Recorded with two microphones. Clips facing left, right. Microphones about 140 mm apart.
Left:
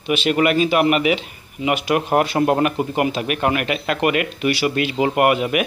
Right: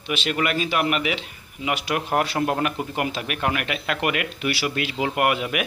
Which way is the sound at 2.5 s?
5° left (ahead or behind).